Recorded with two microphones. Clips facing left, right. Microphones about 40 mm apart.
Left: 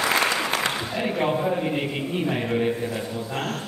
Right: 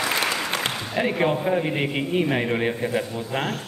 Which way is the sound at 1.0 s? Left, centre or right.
Centre.